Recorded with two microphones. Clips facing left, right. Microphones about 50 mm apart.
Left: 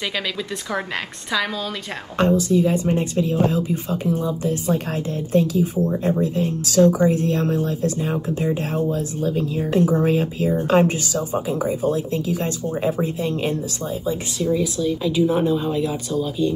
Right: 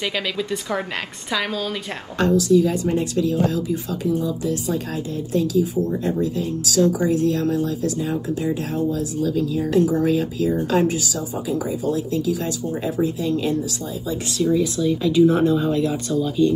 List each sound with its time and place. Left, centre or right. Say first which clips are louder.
0.0 s speech: right 1 dB; centre
2.1 s speech: right 1 dB; left
14.4 s speech: right 2 dB; centre